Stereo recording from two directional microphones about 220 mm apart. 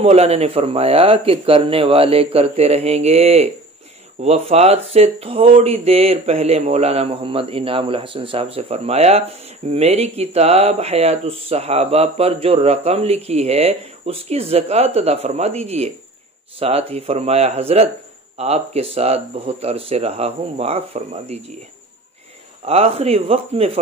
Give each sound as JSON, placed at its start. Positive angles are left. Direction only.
{"t": 0.0, "sound": "speech", "side_deg": -30}
{"t": 22.7, "sound": "speech", "side_deg": -25}